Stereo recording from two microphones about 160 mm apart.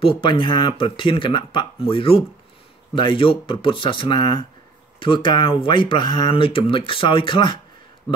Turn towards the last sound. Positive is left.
turn(degrees=30)  # may be behind; listen again after turning